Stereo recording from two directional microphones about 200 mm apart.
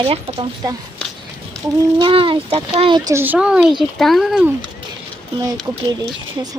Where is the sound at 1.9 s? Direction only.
25° right (ahead or behind).